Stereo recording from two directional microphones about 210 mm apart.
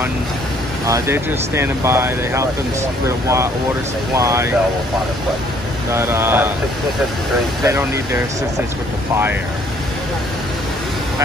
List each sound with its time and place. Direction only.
0.8 s speech: 15° right (ahead or behind)
4.1 s speech: 15° right (ahead or behind)
5.9 s speech: 10° right (ahead or behind)
7.6 s speech: 15° right (ahead or behind)